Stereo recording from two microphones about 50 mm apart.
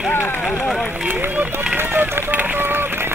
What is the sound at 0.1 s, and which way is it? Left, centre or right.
Run, left.